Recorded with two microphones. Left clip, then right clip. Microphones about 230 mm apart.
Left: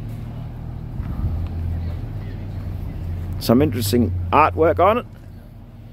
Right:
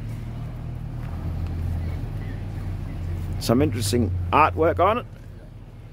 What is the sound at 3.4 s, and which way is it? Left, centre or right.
Speech, left.